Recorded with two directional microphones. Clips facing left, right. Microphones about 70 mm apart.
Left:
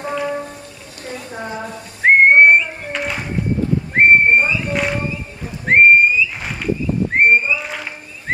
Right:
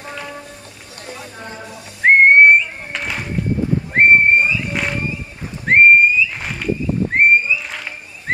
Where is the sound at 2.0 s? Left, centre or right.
Centre.